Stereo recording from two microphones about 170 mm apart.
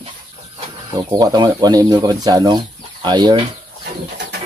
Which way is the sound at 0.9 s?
20° right (ahead or behind).